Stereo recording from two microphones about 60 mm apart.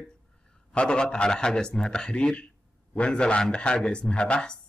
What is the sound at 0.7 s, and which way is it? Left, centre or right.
A man's voice, centre.